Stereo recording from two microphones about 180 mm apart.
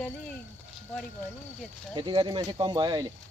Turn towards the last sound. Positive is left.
turn(degrees=-25)  # may be behind; listen again after turning